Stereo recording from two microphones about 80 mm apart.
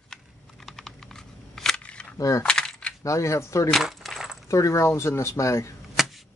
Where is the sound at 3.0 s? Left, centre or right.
Left.